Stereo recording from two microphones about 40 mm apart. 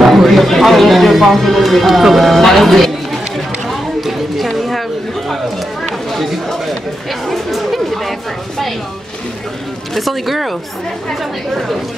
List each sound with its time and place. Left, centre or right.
0.0 s a man's voice: centre
3.3 s a sound: centre
5.9 s chatter: centre
9.9 s speech: centre
11.5 s speech: centre